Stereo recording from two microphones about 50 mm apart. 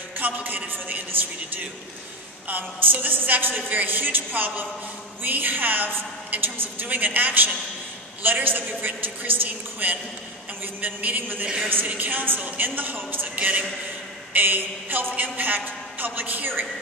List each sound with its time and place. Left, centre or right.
0.2 s a woman's voice: right
2.4 s a woman's voice: right